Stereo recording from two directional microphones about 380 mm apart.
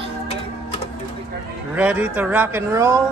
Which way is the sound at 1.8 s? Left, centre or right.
Centre.